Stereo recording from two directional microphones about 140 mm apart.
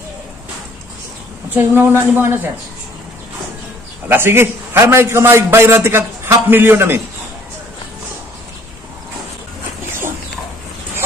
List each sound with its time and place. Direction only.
1.5 s a man's voice: 15° right (ahead or behind)
4.1 s a man's voice: 15° right (ahead or behind)
9.8 s dog: 15° right (ahead or behind)